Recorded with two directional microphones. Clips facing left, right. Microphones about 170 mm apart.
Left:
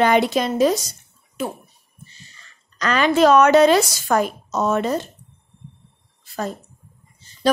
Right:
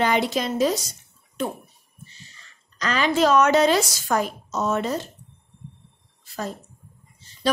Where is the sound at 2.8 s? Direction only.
60° left (ahead or behind).